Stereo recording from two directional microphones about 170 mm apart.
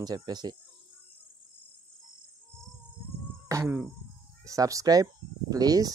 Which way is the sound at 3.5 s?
15° right (ahead or behind).